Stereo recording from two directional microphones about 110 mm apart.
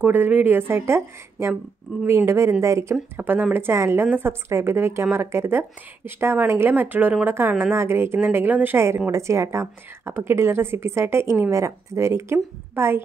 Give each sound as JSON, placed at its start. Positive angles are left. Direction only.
{"t": 0.0, "sound": "a woman's voice", "side_deg": -15}